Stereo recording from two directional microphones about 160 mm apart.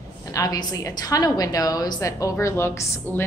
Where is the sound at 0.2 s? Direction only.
20° left (ahead or behind).